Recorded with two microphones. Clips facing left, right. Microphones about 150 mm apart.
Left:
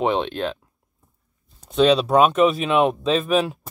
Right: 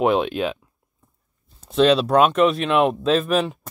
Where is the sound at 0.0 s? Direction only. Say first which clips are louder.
Right 2 dB; 5° right (ahead or behind).